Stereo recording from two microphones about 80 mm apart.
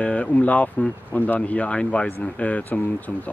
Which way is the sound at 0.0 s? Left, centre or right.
Centre.